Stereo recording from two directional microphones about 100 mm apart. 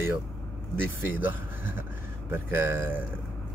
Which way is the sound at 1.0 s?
20° right (ahead or behind).